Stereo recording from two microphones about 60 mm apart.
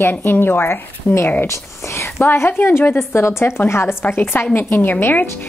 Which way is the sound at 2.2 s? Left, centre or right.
Left.